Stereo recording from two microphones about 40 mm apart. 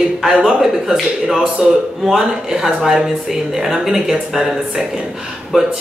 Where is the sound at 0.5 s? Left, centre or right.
Centre.